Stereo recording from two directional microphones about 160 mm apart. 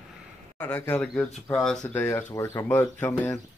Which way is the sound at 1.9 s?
15° left (ahead or behind).